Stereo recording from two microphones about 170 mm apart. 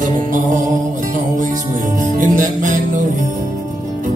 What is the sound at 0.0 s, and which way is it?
Music, 50° right (ahead or behind).